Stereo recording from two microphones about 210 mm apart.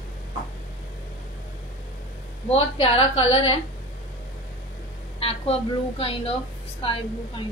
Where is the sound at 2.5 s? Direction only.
25° left (ahead or behind).